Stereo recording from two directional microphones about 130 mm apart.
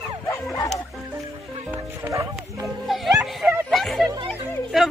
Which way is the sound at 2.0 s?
25° right (ahead or behind).